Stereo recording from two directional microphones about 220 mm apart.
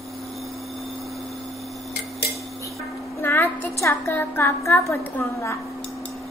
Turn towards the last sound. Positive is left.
turn(degrees=15)  # may be behind; listen again after turning